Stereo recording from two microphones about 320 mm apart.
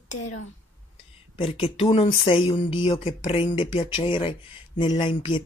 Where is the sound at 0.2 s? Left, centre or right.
Left.